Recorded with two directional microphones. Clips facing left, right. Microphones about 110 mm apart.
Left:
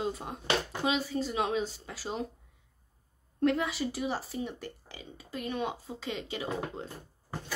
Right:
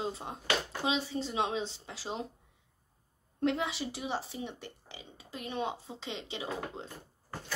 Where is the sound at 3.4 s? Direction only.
20° right (ahead or behind).